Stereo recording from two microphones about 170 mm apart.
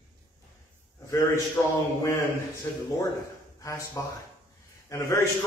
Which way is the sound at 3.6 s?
20° left (ahead or behind).